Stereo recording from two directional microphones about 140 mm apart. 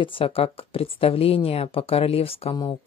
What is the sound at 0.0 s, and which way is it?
A woman's voice, 40° left (ahead or behind).